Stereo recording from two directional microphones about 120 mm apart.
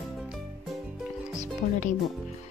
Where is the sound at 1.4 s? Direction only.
90° left.